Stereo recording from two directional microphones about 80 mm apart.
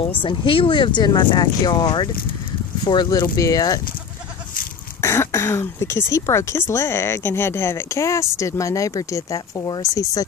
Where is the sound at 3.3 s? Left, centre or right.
Left.